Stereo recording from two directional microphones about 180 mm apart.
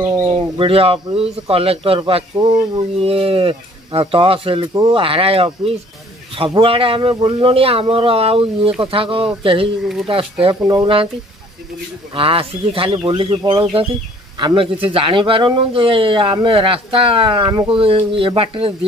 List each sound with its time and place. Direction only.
0.3 s speech: 30° right (ahead or behind)
12.1 s speech: 30° right (ahead or behind)